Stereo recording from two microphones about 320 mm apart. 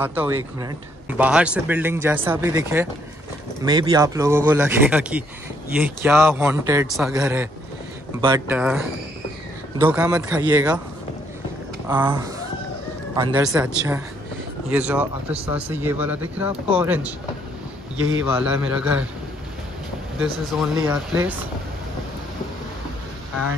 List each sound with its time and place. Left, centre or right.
0.0 s speech: centre
11.9 s a man's voice: centre
15.3 s speech: centre
15.7 s speech: centre
18.2 s speech: centre
20.5 s speech: centre